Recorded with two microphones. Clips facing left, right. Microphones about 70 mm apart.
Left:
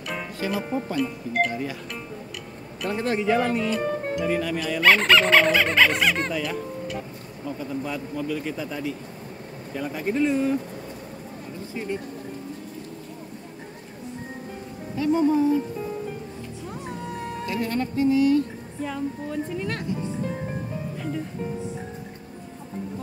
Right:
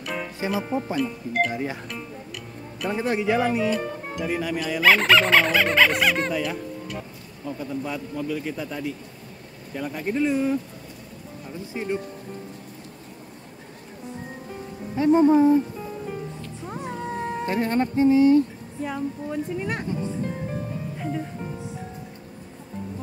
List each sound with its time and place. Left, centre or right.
0.0 s music: centre
0.9 s speech: centre
1.5 s a woman's voice: right
2.8 s speech: centre
15.0 s speech: right
16.6 s cat: right
18.8 s a woman's voice: centre